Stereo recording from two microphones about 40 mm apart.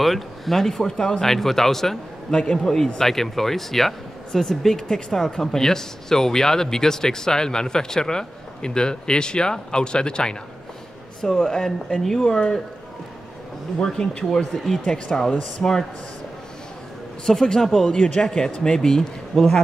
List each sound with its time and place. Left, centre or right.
0.0 s speech: centre
1.2 s speech: centre
13.7 s speech: centre
15.6 s speech: left
17.3 s speech: centre
17.9 s speech: left